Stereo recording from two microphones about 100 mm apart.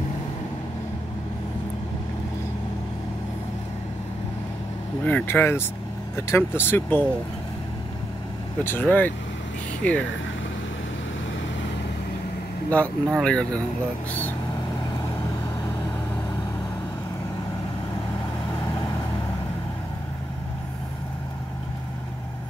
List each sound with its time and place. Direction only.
5.0 s speech: 20° left (ahead or behind)
8.6 s speech: 20° left (ahead or behind)
12.6 s speech: 15° left (ahead or behind)